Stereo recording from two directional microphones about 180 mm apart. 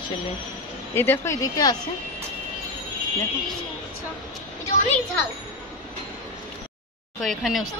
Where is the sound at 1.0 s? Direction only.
15° left (ahead or behind).